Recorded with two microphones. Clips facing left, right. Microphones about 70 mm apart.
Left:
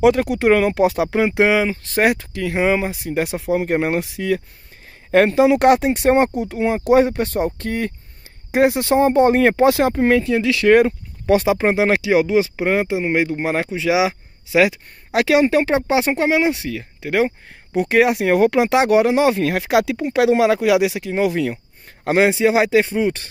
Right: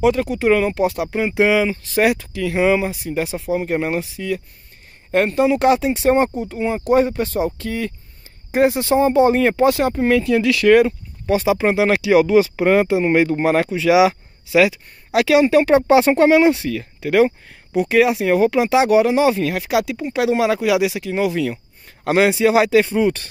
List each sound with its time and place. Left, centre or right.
0.0 s speech: left
1.5 s speech: left
3.3 s speech: left
4.0 s speech: left
5.1 s speech: left
10.0 s speech: left
15.1 s speech: left
17.7 s speech: left
19.8 s speech: left
22.0 s speech: left